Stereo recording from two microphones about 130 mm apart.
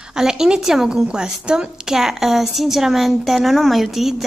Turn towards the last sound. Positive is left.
turn(degrees=0)  # may be behind; listen again after turning